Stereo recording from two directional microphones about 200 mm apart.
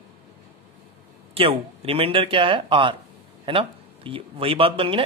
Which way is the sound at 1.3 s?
30° right (ahead or behind).